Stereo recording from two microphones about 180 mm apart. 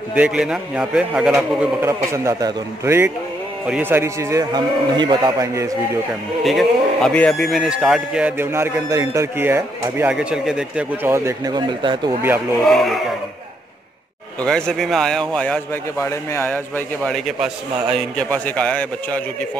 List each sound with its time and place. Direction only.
0.1 s a man's voice: 5° right (ahead or behind)
6.4 s a man's voice: centre (ahead or behind); by 12.0 s 25° right (ahead or behind)
12.6 s a man's voice: centre (ahead or behind)
14.4 s a man's voice: 5° left (ahead or behind)